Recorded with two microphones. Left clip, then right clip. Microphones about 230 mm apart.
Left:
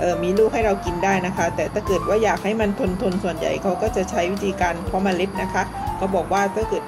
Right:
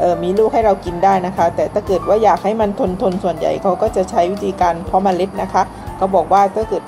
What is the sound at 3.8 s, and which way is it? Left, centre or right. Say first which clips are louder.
Speech: right 6 dB; right.